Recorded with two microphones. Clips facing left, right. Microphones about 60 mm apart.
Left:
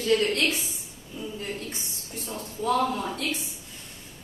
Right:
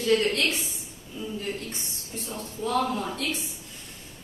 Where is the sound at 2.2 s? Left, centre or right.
Centre.